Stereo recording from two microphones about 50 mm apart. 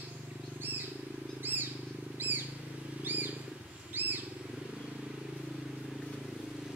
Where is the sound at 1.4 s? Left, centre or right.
Right.